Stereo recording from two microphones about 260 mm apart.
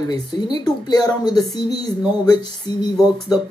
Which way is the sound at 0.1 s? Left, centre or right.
Centre.